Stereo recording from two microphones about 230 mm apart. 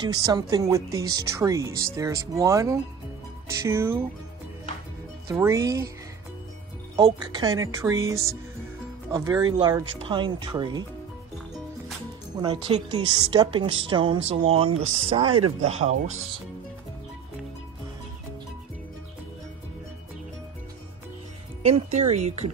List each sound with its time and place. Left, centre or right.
0.0 s a woman's voice: centre
5.3 s a woman's voice: centre
7.0 s a woman's voice: centre
12.4 s speech: centre
21.6 s speech: right